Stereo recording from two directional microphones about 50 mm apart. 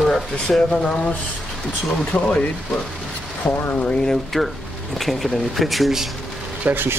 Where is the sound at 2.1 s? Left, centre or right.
Left.